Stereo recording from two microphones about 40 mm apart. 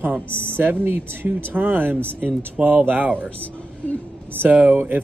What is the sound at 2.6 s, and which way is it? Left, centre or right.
Speech, right.